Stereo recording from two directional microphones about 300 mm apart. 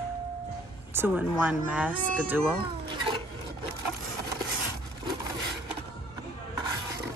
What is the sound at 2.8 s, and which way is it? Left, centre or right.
Cat, centre.